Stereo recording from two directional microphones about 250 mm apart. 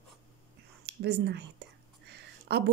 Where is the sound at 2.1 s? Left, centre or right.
Right.